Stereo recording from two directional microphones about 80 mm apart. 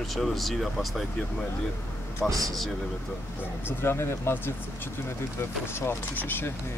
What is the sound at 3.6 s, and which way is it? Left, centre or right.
Speech, left.